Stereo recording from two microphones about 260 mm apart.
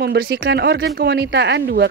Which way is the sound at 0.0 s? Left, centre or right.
Right.